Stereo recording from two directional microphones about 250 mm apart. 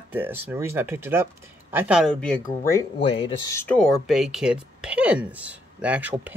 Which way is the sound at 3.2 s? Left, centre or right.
Centre.